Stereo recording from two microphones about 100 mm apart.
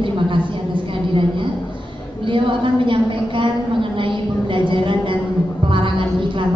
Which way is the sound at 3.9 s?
55° right (ahead or behind).